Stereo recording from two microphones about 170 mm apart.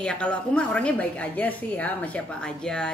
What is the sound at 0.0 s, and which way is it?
A woman's voice, 5° left (ahead or behind).